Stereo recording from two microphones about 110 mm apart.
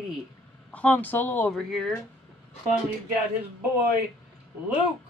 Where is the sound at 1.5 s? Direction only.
5° left (ahead or behind).